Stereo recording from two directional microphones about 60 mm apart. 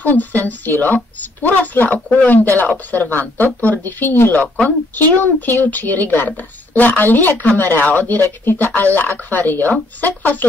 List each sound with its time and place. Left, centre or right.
0.0 s speech: left